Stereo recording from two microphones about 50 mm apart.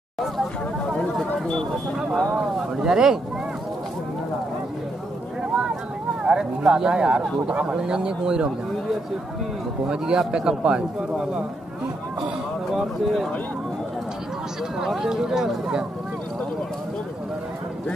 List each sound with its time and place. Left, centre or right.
2.0 s speech: centre
5.4 s a sound: centre
6.2 s speech: centre
9.8 s speech: centre
12.7 s speech: centre
15.0 s speech: centre